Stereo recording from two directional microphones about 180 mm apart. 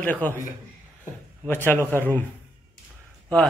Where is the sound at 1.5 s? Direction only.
10° left (ahead or behind).